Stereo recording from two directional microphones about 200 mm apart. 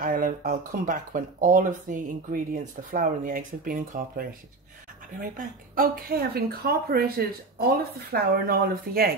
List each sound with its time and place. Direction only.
0.0 s speech: 45° right (ahead or behind)